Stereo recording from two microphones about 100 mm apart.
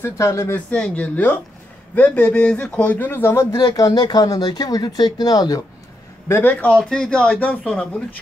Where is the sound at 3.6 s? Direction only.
40° left (ahead or behind).